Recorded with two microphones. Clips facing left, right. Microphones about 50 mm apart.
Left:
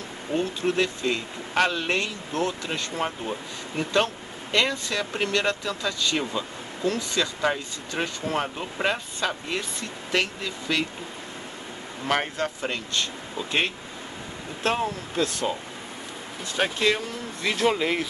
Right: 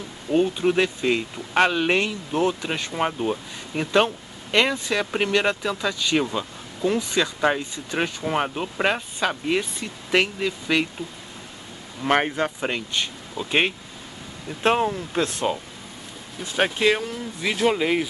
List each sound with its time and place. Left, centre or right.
0.3 s speech: centre
12.1 s speech: right
16.5 s speech: centre